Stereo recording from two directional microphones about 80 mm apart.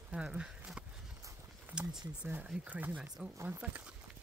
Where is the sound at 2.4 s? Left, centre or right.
Centre.